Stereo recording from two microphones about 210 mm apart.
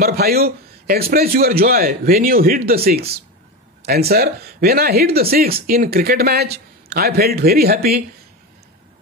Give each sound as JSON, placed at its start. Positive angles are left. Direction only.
{"t": 0.0, "sound": "speech", "side_deg": -45}